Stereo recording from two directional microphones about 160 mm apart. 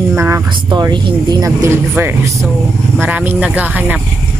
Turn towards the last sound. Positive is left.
turn(degrees=-10)  # may be behind; listen again after turning